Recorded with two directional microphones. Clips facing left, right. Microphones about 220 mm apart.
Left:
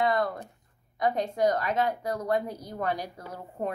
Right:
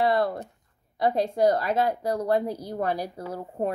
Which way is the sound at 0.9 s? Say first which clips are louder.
Right 4 dB; 30° right (ahead or behind).